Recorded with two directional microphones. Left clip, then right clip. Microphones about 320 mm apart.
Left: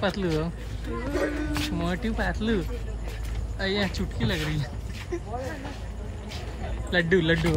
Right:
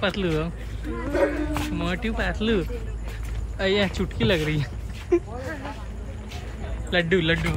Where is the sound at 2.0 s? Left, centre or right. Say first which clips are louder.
Right 3 dB; centre.